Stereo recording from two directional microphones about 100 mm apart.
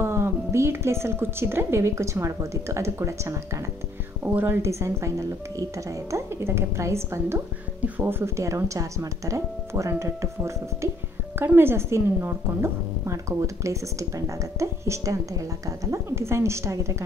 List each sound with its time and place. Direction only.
0.0 s a woman's voice: 25° right (ahead or behind)